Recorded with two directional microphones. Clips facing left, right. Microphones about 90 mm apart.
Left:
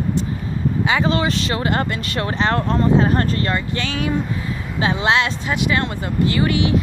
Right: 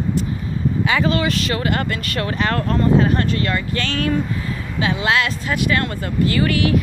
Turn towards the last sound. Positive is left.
turn(degrees=25)  # may be behind; listen again after turning